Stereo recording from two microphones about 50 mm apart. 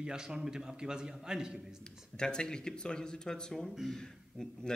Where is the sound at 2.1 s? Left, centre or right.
Centre.